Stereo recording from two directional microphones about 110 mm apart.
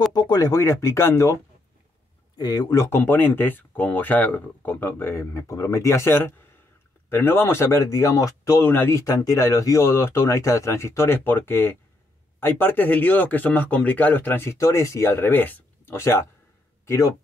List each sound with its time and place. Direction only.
0.1 s speech: 40° left (ahead or behind)
2.3 s speech: 35° left (ahead or behind); by 16.3 s 20° left (ahead or behind)